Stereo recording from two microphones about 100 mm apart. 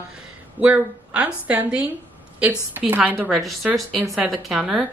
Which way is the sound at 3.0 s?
10° right (ahead or behind).